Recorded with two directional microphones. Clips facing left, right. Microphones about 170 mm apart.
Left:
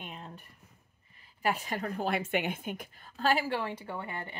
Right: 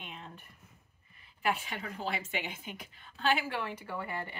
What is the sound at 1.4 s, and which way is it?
A woman's voice, 40° left (ahead or behind).